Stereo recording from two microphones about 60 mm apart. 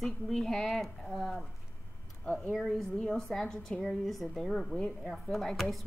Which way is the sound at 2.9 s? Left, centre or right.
Centre.